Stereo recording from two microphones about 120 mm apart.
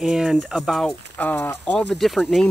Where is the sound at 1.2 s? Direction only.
15° left (ahead or behind); by 2.5 s centre (ahead or behind).